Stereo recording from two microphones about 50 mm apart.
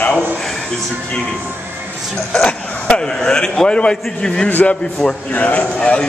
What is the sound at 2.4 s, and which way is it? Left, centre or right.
A man's voice, centre.